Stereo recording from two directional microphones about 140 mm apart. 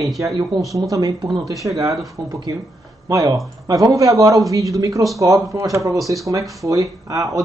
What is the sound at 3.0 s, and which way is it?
Speech, 25° right (ahead or behind).